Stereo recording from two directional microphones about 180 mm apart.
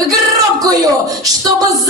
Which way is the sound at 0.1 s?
20° right (ahead or behind).